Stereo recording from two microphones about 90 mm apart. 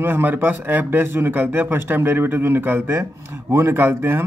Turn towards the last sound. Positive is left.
turn(degrees=-25)  # may be behind; listen again after turning